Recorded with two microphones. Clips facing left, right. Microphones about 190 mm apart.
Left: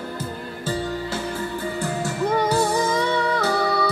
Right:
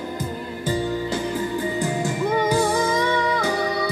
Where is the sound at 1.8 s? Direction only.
15° right (ahead or behind).